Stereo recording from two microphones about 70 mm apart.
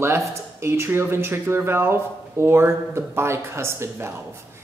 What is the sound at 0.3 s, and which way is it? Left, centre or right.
Speech, right.